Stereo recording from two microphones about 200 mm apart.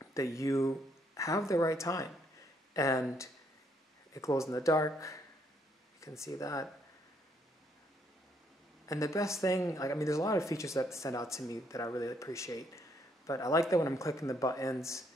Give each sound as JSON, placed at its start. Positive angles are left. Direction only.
{"t": 0.0, "sound": "speech", "side_deg": 15}
{"t": 8.8, "sound": "speech", "side_deg": 15}